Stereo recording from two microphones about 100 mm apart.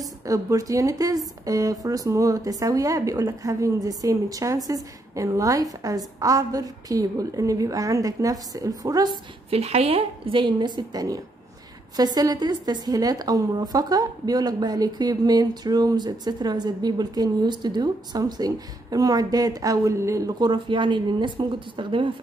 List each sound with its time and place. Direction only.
0.2 s a woman's voice: 35° right (ahead or behind)
9.5 s a woman's voice: 90° right; by 22.1 s 55° right (ahead or behind)